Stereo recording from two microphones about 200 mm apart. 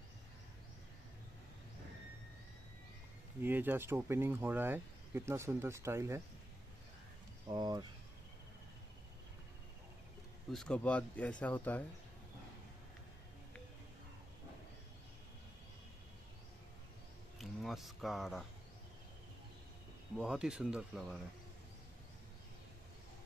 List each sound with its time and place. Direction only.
3.4 s speech: 10° right (ahead or behind)
7.4 s speech: 20° right (ahead or behind)
10.5 s speech: 5° left (ahead or behind)
17.4 s speech: centre (ahead or behind)
20.2 s speech: 5° right (ahead or behind)